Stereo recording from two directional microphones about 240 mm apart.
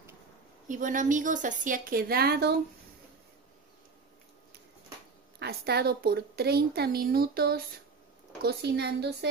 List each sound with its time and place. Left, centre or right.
0.7 s a woman's voice: right
5.4 s a woman's voice: right